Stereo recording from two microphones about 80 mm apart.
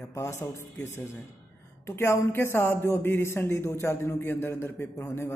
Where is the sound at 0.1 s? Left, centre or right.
Left.